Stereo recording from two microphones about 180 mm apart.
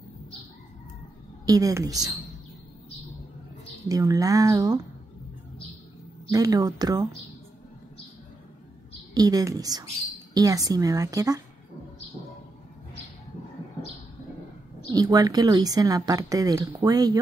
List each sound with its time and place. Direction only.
1.4 s speech: 20° right (ahead or behind)
3.9 s speech: 20° right (ahead or behind)
6.3 s speech: 20° right (ahead or behind)
9.1 s speech: 20° right (ahead or behind)
14.9 s speech: 20° right (ahead or behind)